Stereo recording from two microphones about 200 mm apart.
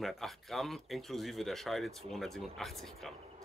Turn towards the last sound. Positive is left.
turn(degrees=0)  # may be behind; listen again after turning